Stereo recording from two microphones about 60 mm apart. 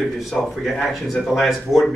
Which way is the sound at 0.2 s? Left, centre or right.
Centre.